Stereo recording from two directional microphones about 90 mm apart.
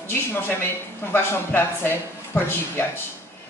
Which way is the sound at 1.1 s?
25° left (ahead or behind).